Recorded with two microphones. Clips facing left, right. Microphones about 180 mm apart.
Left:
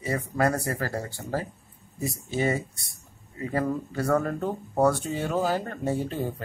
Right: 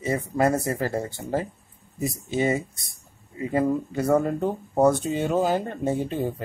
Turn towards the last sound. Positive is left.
turn(degrees=-15)  # may be behind; listen again after turning